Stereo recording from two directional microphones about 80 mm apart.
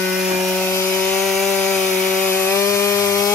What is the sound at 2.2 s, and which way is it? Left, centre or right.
Wood, left.